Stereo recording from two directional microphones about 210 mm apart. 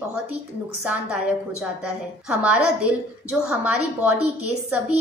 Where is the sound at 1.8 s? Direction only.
5° right (ahead or behind).